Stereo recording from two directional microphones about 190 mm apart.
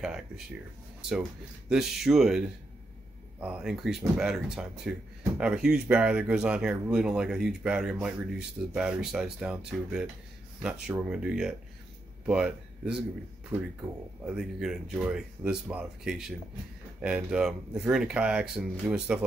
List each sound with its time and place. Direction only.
1.7 s speech: centre (ahead or behind)